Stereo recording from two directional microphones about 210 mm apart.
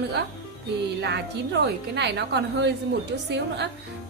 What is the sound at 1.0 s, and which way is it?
A woman's voice, 55° right (ahead or behind).